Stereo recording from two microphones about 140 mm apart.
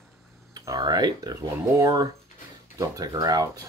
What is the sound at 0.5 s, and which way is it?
Speech, 25° right (ahead or behind).